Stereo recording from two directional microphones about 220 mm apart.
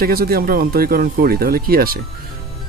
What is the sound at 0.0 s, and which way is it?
Speech, 45° right (ahead or behind).